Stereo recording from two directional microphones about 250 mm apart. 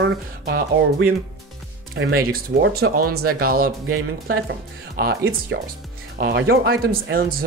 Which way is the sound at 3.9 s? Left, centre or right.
Right.